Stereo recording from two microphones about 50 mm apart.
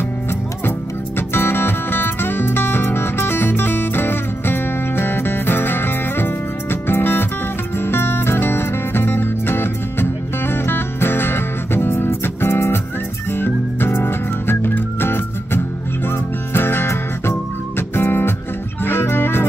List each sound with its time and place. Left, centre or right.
0.7 s music: left